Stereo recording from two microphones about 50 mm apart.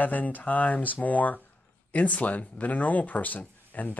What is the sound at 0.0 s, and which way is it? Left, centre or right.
Speech, left.